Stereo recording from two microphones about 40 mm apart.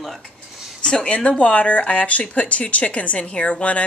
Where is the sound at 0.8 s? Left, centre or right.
Left.